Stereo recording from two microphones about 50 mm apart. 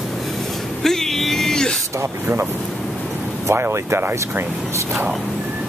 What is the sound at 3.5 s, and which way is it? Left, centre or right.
Speech, right.